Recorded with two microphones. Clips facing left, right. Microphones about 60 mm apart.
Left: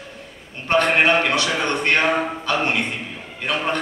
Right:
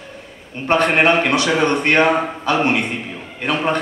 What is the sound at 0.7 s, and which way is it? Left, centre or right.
A man's voice, centre.